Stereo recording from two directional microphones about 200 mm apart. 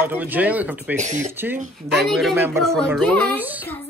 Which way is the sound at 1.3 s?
10° right (ahead or behind).